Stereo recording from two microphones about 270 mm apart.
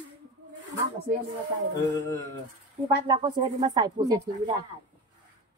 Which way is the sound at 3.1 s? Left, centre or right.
Centre.